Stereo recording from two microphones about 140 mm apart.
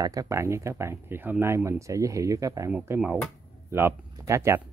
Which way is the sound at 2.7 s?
10° right (ahead or behind).